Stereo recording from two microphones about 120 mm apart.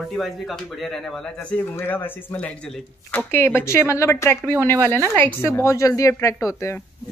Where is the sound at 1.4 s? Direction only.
15° left (ahead or behind).